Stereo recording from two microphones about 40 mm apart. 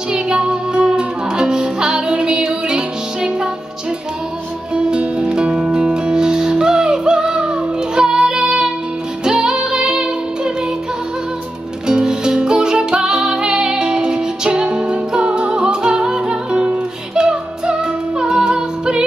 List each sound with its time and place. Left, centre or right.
0.1 s music: right
4.7 s music: right
11.9 s music: centre